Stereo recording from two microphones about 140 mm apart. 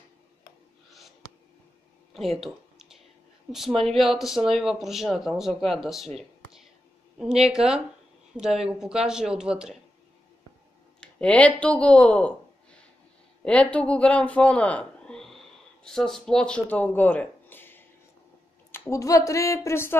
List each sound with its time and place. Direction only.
2.4 s a sound: 5° right (ahead or behind)
3.5 s speech: centre (ahead or behind)
11.0 s speech: 10° left (ahead or behind)
13.4 s speech: 10° left (ahead or behind)